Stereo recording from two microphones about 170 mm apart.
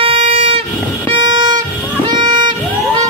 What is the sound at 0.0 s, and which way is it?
Train, 35° right (ahead or behind).